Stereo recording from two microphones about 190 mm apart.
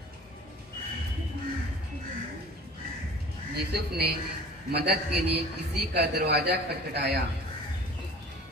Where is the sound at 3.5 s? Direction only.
55° right (ahead or behind).